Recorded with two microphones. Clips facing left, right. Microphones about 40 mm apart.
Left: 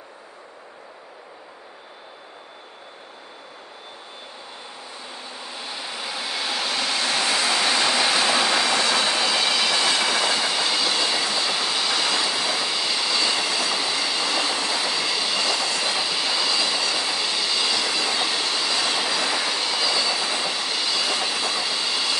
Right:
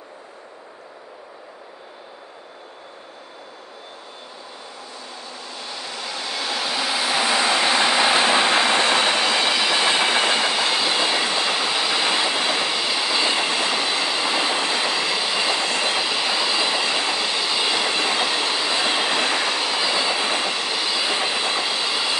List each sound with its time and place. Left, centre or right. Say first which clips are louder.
5.3 s a sound: even; centre; by 9.6 s right
9.6 s train: right 2 dB; centre
9.8 s train: right 3 dB; right
11.5 s train: right 2 dB; right
12.7 s train: right 2 dB; centre
17.2 s train: right 2 dB; centre; by 19.6 s right
19.6 s train: right 2 dB; centre; by 20.4 s right
20.4 s train: right 2 dB; right
21.8 s train: right 2 dB; centre